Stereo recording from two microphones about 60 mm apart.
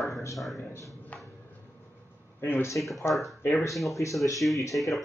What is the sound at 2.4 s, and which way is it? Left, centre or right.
Speech, left.